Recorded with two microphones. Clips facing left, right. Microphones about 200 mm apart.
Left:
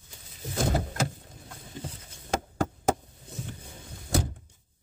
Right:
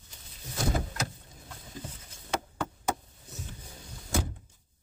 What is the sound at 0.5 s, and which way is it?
Vehicle, 50° left (ahead or behind).